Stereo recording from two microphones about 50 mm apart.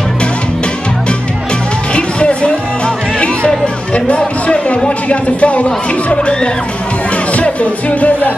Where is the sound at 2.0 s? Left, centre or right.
Left.